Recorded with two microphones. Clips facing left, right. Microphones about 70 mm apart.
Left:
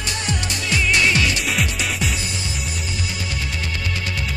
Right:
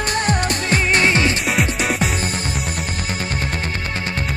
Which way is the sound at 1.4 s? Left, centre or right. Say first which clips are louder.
Right 4 dB; right.